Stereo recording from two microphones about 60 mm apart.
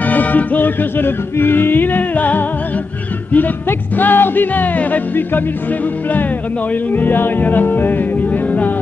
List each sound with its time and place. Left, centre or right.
0.0 s music: left
6.7 s music: left